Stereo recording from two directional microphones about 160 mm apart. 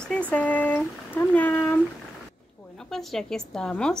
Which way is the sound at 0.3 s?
10° left (ahead or behind).